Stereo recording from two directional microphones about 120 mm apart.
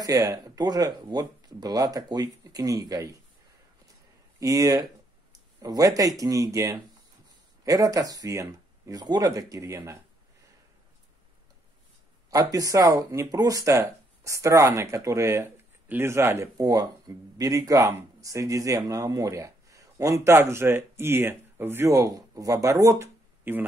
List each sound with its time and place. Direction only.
0.0 s speech: 30° right (ahead or behind)
4.4 s speech: 25° right (ahead or behind)
12.3 s speech: 30° right (ahead or behind)